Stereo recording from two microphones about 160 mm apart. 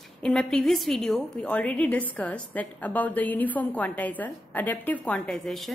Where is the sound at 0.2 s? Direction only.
5° left (ahead or behind).